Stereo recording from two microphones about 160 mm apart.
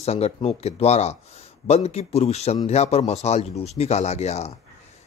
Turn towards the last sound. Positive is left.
turn(degrees=40)  # may be behind; listen again after turning